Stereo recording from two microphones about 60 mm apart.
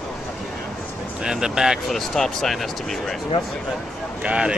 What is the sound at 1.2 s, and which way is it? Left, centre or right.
Speech, centre.